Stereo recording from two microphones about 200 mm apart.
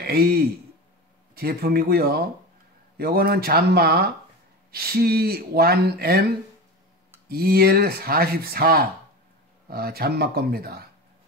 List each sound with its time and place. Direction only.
0.0 s a man's voice: 50° right (ahead or behind)